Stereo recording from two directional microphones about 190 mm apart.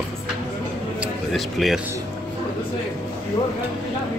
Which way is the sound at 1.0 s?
Centre (ahead or behind).